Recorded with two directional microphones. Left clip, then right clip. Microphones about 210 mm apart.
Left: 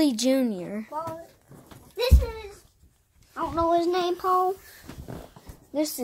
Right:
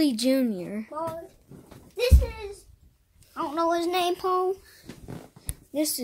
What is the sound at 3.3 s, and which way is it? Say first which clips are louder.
Speech: left 2 dB; 50° right (ahead or behind).